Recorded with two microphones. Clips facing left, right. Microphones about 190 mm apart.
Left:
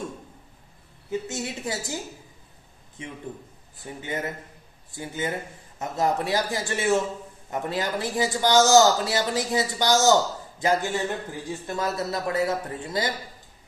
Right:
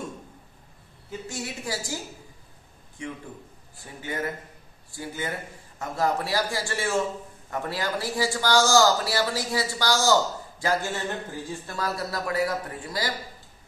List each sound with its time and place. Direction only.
1.2 s speech: 20° left (ahead or behind)
3.0 s speech: 20° left (ahead or behind)